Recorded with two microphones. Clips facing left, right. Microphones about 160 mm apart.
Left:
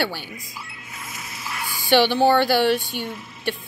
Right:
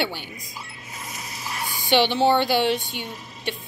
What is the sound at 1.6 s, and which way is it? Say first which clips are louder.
Speech: left 2 dB; 20° right (ahead or behind).